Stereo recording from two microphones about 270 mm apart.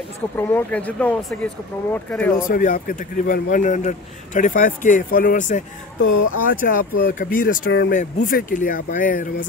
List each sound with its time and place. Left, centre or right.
0.4 s speech: centre
2.3 s speech: left
5.9 s speech: left
6.6 s speech: left